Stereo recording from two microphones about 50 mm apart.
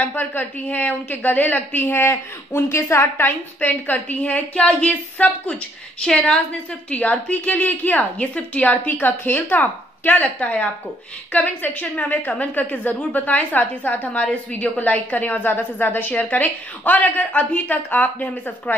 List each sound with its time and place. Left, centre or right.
0.1 s a woman's voice: left; by 6.4 s centre
6.9 s a woman's voice: left